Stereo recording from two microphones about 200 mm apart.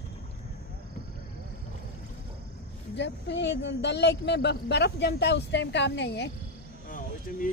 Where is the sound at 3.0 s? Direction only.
60° left (ahead or behind).